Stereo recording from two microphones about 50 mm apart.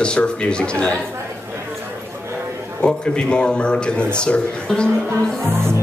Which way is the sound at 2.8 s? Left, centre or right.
Centre.